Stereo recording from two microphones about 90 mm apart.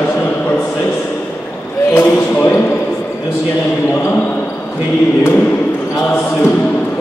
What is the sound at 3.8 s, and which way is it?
Basketball bounce, 20° left (ahead or behind).